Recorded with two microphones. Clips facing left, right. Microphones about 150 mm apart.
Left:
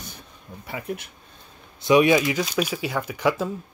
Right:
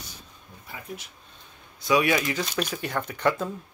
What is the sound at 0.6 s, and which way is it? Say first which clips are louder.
Speech: left 8 dB; 70° left (ahead or behind).